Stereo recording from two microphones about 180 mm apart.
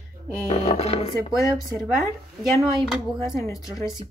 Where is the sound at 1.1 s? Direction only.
20° left (ahead or behind).